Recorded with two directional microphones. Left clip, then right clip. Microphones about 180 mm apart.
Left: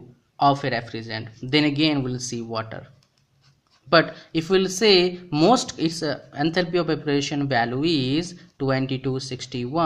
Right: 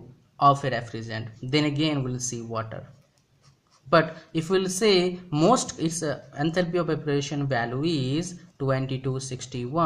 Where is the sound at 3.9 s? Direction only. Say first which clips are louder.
Left 3 dB; 25° left (ahead or behind).